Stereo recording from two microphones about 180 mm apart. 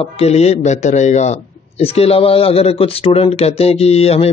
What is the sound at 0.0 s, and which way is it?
A man's voice, 35° left (ahead or behind).